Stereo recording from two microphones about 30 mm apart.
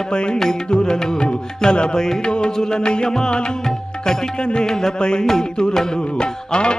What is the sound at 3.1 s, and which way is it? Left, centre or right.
Music, centre.